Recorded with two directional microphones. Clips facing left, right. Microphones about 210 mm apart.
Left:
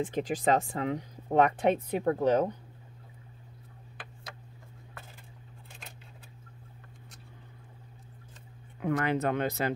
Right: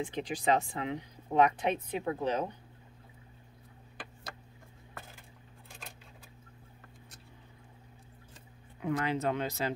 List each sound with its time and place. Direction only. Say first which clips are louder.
0.0 s speech: left 4 dB; 45° left (ahead or behind)
8.8 s speech: left 3 dB; 55° left (ahead or behind)